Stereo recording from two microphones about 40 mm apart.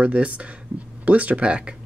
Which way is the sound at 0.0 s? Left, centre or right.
Right.